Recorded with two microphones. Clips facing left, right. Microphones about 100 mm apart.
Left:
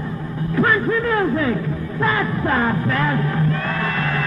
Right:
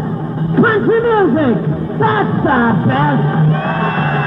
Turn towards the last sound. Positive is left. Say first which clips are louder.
# right 7 dB
turn(degrees=-40)  # may be behind; listen again after turning